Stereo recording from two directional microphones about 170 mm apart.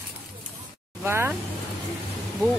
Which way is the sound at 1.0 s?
15° right (ahead or behind).